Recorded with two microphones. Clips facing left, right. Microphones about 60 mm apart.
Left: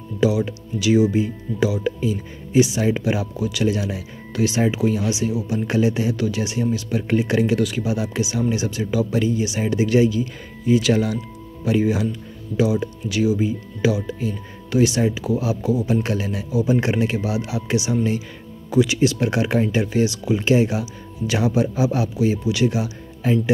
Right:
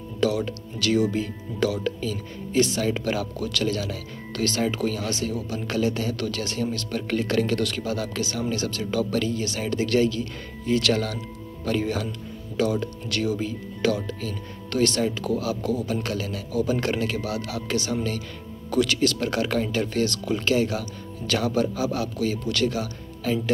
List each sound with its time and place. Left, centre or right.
0.2 s a man's voice: centre